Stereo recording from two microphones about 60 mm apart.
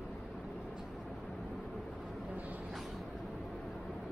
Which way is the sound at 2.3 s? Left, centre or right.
Right.